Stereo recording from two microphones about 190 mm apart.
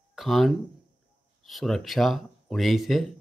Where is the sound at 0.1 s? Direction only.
Centre (ahead or behind).